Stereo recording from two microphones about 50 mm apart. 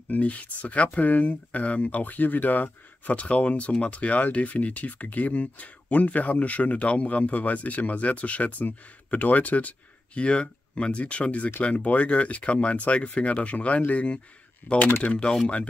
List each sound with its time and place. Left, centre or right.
0.1 s speech: left
14.8 s speech: left
15.0 s speech: left